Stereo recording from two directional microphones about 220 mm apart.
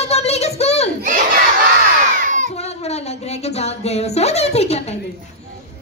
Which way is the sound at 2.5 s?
30° left (ahead or behind).